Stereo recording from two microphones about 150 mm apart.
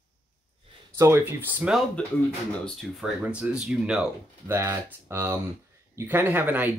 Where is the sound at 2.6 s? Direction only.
Centre (ahead or behind).